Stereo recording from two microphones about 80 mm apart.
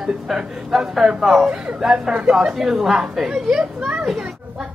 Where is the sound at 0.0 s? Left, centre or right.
Centre.